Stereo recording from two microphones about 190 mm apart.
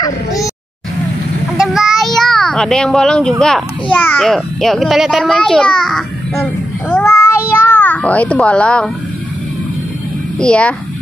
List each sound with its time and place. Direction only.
0.0 s a sound: 20° left (ahead or behind)
1.7 s speech: centre (ahead or behind)
10.4 s speech: 5° left (ahead or behind)